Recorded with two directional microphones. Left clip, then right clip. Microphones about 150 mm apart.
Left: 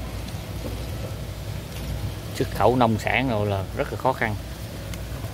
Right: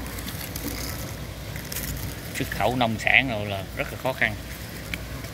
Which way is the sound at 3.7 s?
35° left (ahead or behind).